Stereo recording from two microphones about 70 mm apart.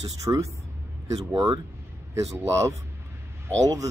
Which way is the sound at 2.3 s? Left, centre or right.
Right.